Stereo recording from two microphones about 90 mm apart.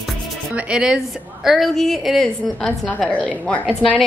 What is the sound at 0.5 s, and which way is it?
A woman's voice, 10° right (ahead or behind).